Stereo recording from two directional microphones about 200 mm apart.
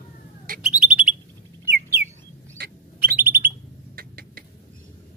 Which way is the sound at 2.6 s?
50° right (ahead or behind).